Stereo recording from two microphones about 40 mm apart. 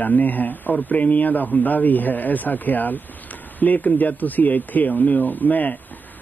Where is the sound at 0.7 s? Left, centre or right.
Left.